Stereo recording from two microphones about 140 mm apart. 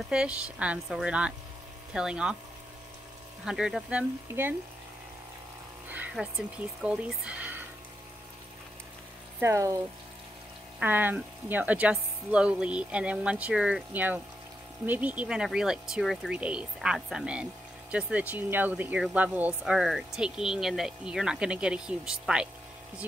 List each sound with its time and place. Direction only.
0.1 s speech: 5° right (ahead or behind)
3.4 s speech: 5° right (ahead or behind)
4.3 s speech: 15° right (ahead or behind)
5.9 s music: 10° right (ahead or behind)
6.8 s speech: 10° right (ahead or behind)
9.4 s speech: 20° right (ahead or behind)
10.8 s speech: 15° right (ahead or behind)